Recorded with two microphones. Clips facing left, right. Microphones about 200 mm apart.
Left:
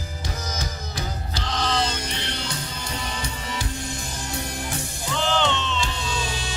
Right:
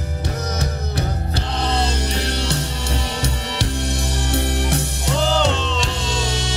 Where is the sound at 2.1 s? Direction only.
80° right.